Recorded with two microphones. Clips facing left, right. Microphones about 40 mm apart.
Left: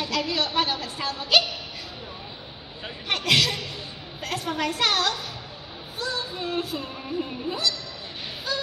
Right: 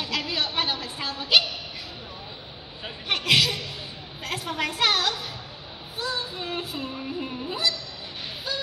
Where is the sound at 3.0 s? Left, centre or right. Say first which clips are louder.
Even; right.